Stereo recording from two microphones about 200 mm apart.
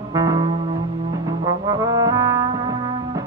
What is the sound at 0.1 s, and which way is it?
Music, 15° right (ahead or behind).